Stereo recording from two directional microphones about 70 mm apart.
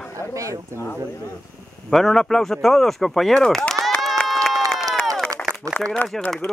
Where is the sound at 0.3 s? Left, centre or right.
Right.